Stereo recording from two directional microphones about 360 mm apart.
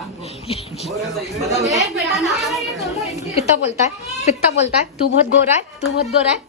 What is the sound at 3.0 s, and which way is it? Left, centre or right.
A woman's voice, centre.